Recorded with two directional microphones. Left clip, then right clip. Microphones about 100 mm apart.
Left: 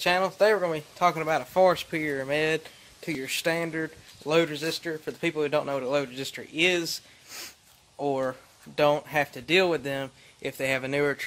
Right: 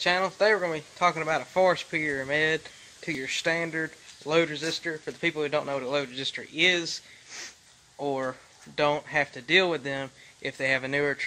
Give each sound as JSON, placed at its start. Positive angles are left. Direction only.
{"t": 0.0, "sound": "speech", "side_deg": 20}
{"t": 8.0, "sound": "speech", "side_deg": 15}